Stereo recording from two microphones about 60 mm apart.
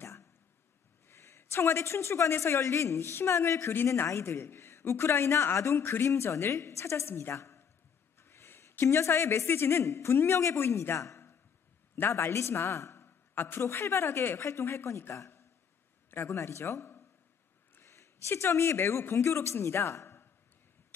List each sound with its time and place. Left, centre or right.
0.0 s a sound: left
1.0 s a woman's voice: left
3.7 s a woman's voice: left
13.0 s a sound: left
13.6 s a woman's voice: left
16.1 s speech: left
16.3 s a woman's voice: left
19.1 s a woman's voice: left